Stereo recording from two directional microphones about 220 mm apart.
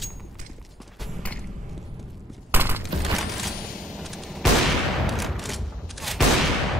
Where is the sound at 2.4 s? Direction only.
10° right (ahead or behind).